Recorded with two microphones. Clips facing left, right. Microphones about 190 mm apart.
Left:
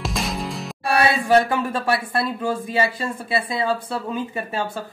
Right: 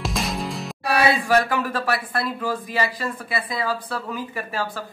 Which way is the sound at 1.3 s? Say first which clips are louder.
Left 3 dB; 25° left (ahead or behind).